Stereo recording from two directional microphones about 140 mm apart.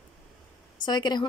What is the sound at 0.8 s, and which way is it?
Speech, 30° left (ahead or behind).